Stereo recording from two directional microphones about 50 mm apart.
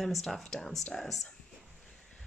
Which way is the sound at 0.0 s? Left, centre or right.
Centre.